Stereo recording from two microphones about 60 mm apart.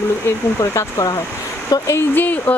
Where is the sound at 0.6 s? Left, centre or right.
Left.